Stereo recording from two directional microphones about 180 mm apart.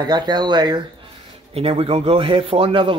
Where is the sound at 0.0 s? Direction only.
25° right (ahead or behind).